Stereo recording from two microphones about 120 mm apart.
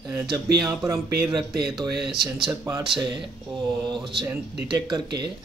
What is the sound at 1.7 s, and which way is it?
Speech, centre (ahead or behind).